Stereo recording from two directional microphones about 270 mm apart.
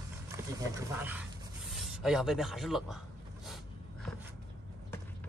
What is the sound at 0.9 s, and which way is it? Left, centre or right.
Speech, centre.